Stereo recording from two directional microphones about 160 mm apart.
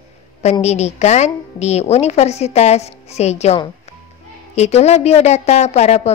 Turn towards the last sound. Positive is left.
turn(degrees=45)  # may be behind; listen again after turning